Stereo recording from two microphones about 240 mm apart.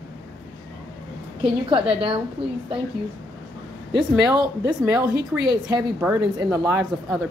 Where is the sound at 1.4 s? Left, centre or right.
Right.